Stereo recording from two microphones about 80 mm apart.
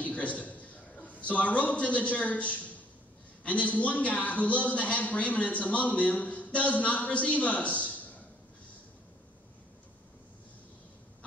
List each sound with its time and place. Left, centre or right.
0.0 s a man's voice: centre